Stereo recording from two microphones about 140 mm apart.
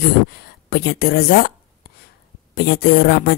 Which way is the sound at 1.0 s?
90° left.